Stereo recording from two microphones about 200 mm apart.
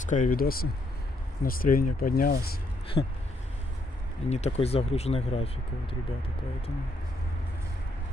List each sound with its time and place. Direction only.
0.0 s speech: 40° left (ahead or behind)
2.9 s speech: 30° left (ahead or behind)
4.3 s speech: 30° left (ahead or behind)